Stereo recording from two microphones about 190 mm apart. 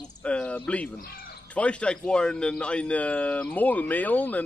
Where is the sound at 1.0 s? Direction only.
55° left (ahead or behind).